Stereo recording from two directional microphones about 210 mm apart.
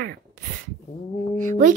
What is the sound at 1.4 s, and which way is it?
Speech, 35° right (ahead or behind).